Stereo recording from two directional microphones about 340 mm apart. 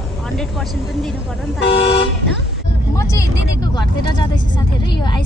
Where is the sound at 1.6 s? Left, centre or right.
Left.